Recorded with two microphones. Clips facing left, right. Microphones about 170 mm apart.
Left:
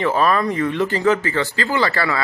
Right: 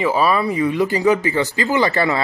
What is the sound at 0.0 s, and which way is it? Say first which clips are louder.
Speech: right 1 dB; 5° right (ahead or behind).